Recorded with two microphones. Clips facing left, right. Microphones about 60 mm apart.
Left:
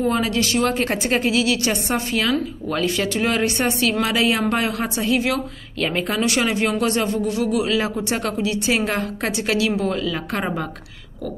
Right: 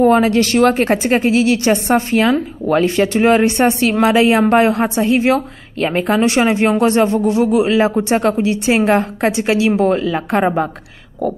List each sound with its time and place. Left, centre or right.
0.0 s speech: right
0.8 s a woman's voice: right